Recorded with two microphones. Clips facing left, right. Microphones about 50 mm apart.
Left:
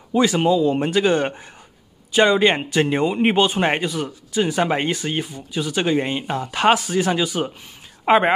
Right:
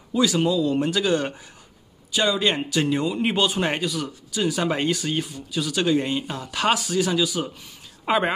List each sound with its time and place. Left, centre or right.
0.1 s a man's voice: left